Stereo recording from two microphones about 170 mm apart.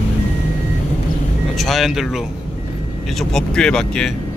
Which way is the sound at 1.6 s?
Centre (ahead or behind).